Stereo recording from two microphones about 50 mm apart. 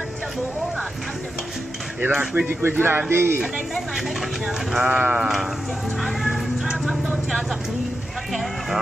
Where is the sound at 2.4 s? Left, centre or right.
Right.